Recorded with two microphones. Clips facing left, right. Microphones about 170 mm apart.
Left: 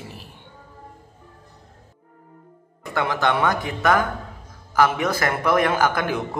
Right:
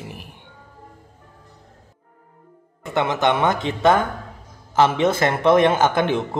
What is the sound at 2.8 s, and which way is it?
A man's voice, 20° right (ahead or behind).